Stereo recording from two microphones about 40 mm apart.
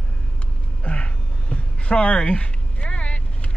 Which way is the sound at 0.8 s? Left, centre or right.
Left.